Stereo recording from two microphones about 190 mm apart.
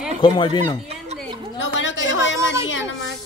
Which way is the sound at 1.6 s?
75° left (ahead or behind).